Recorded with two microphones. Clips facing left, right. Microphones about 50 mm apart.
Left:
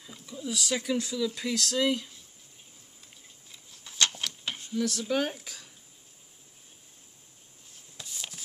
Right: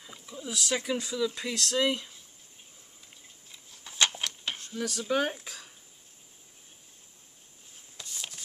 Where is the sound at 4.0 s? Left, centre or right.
Centre.